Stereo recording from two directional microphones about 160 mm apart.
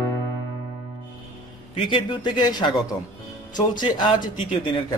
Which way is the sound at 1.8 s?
30° left (ahead or behind).